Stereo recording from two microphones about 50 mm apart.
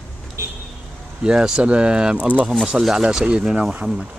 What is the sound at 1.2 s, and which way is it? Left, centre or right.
Speech, centre.